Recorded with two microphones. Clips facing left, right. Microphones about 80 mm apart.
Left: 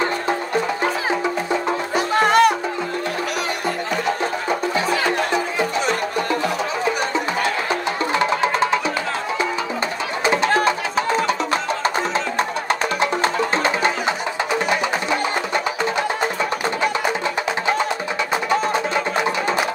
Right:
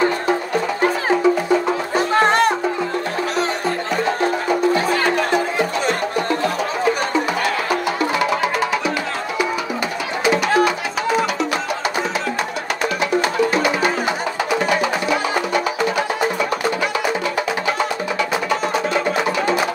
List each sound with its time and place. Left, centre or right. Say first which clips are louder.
2.1 s music: left 1 dB; right
4.7 s music: right 2 dB; right
8.0 s music: even; left
10.2 s music: right 2 dB; left
13.0 s music: right 2 dB; left
15.0 s music: right 2 dB; left